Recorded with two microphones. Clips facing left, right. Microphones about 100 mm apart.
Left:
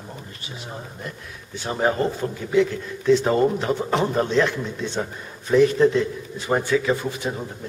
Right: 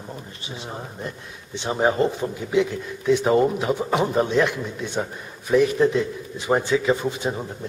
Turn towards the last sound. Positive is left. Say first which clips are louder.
# right 2 dB
turn(degrees=-20)  # may be behind; listen again after turning